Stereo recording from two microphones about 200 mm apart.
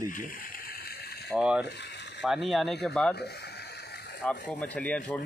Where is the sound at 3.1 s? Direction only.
55° left (ahead or behind).